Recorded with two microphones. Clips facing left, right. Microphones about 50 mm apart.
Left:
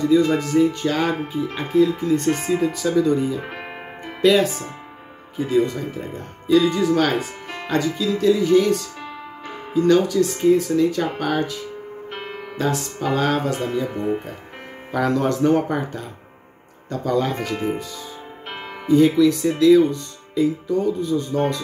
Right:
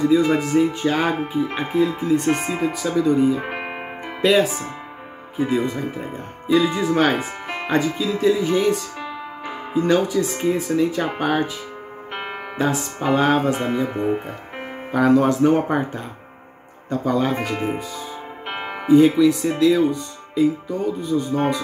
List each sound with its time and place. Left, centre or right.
0.0 s speech: centre
2.0 s speech: centre
3.4 s music: right
4.3 s speech: centre
14.9 s speech: centre
18.5 s music: right
18.9 s speech: centre